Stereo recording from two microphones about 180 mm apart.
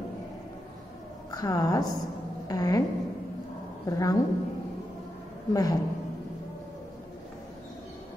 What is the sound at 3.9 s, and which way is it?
Speech, 20° left (ahead or behind).